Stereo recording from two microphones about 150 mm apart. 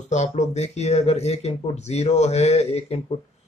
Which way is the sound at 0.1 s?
50° left (ahead or behind).